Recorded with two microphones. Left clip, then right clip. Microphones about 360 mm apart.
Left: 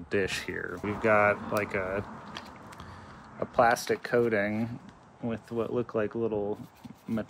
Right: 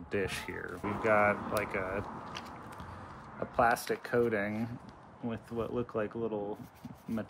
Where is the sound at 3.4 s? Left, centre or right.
Left.